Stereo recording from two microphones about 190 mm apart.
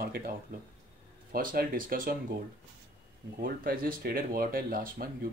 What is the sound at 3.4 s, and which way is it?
Speech, 50° right (ahead or behind).